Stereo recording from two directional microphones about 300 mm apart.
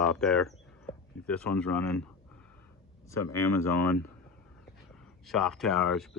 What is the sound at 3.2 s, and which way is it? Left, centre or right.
Speech, left.